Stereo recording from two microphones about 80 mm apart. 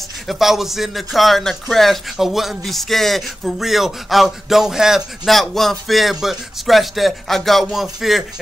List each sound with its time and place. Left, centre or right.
0.3 s a man's voice: centre